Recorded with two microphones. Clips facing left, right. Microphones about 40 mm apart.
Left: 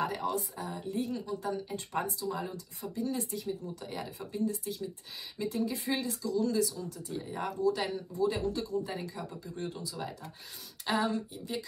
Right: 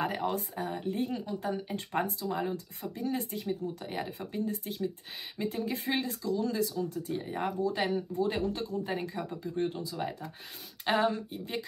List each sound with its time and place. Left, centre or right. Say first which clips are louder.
0.0 s speech: right 1 dB; right